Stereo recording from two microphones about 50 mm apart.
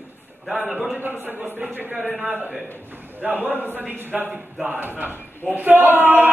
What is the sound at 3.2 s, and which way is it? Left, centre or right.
A woman's voice, right.